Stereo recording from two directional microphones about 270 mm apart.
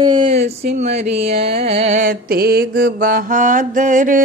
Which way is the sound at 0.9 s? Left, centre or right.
Right.